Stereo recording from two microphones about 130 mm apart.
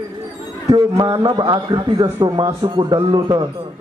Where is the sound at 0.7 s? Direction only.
30° right (ahead or behind).